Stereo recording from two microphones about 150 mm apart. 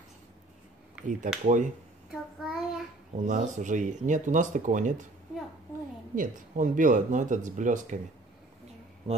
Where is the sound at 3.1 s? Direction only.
55° right (ahead or behind).